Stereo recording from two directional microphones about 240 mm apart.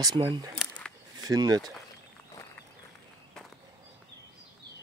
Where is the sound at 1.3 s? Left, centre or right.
Centre.